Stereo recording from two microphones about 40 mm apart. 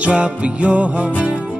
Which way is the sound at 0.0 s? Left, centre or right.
Right.